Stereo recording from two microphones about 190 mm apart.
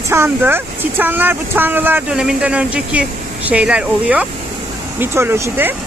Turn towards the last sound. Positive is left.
turn(degrees=-10)  # may be behind; listen again after turning